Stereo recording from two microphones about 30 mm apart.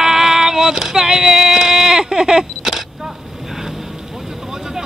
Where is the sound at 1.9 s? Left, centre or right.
Right.